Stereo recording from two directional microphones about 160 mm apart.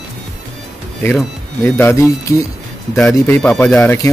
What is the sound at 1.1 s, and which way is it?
Speech, 10° left (ahead or behind).